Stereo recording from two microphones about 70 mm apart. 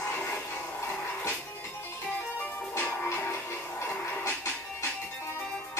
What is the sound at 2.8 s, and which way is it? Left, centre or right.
Music, left.